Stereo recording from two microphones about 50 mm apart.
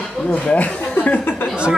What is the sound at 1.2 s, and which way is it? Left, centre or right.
Speech, left.